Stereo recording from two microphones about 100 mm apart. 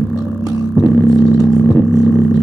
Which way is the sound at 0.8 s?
35° left (ahead or behind).